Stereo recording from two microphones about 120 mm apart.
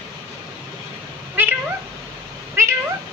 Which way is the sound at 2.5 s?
20° right (ahead or behind).